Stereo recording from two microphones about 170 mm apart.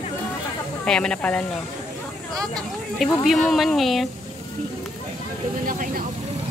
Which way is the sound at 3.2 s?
Centre (ahead or behind).